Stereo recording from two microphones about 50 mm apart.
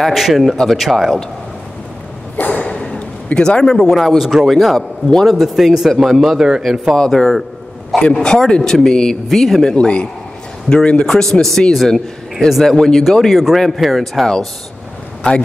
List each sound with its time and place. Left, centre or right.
0.0 s a man's voice: centre
2.3 s a sound: left; by 4.2 s centre
4.2 s a man's voice: centre
7.0 s speech: centre
8.0 s a man's voice: centre
14.2 s a man's voice: centre